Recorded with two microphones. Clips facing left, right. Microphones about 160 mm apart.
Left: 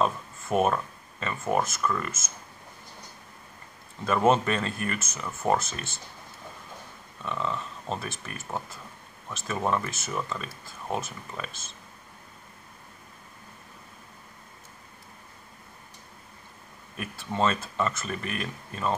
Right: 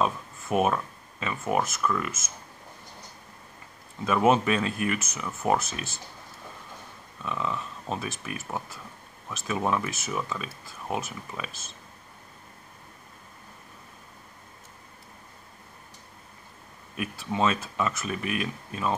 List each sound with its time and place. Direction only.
0.0 s speech: centre (ahead or behind)
4.0 s speech: 5° right (ahead or behind)
7.2 s speech: 5° right (ahead or behind)
16.9 s speech: 5° right (ahead or behind)